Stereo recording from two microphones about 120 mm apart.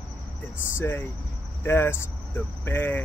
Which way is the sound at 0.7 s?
20° left (ahead or behind).